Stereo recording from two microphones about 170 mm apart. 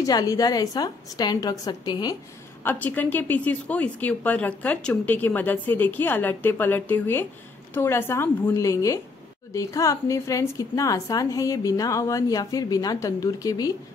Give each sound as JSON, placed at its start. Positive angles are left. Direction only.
{"t": 0.0, "sound": "a woman's voice", "side_deg": 20}
{"t": 2.6, "sound": "a woman's voice", "side_deg": 10}